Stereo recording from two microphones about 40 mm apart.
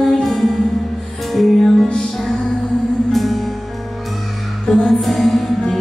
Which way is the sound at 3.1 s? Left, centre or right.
Centre.